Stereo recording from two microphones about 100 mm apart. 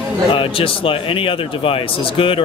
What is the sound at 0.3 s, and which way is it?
Speech, 65° left (ahead or behind).